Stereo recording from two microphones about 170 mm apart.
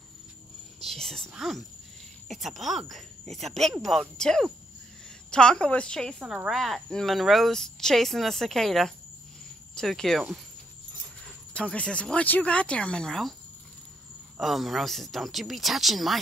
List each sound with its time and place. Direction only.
0.7 s a woman's voice: centre (ahead or behind)
11.5 s speech: 5° left (ahead or behind)
14.4 s a woman's voice: centre (ahead or behind)